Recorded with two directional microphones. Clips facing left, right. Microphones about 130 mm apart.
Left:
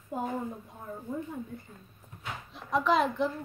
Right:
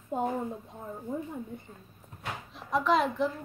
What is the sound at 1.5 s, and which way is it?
Speech, 20° right (ahead or behind).